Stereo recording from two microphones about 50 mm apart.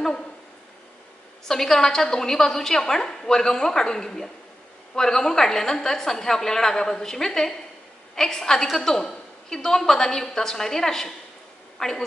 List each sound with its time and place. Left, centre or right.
1.5 s a woman's voice: centre